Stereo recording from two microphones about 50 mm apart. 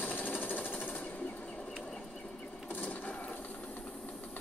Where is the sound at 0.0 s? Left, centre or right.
Left.